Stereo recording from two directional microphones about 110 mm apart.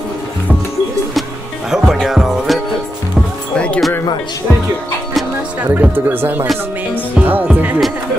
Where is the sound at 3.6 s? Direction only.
5° left (ahead or behind).